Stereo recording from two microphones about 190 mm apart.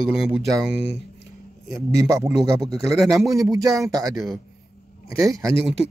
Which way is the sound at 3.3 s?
15° right (ahead or behind).